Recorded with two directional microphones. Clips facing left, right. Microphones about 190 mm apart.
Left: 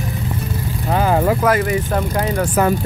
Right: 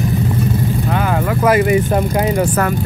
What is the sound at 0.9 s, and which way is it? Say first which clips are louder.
Vehicle: left 6 dB; 30° left (ahead or behind).